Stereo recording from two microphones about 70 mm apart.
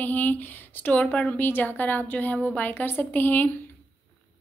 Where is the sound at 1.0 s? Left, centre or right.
Centre.